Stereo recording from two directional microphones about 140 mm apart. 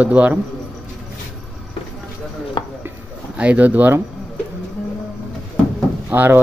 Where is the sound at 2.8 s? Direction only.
10° right (ahead or behind).